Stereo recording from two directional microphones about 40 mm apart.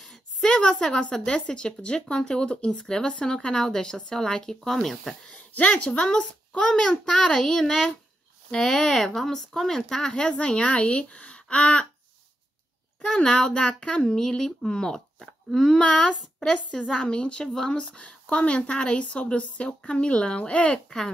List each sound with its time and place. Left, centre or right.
0.4 s a woman's voice: centre
4.6 s speech: centre
5.5 s a woman's voice: left
5.9 s speech: centre
7.3 s speech: centre
8.6 s speech: left
8.9 s speech: centre; by 11.4 s left
11.4 s a sound: left
13.0 s speech: centre
14.0 s speech: centre
15.8 s speech: left